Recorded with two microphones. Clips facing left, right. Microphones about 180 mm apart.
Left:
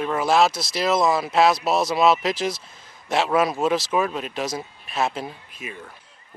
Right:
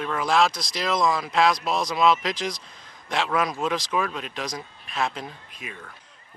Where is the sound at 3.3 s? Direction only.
25° left (ahead or behind).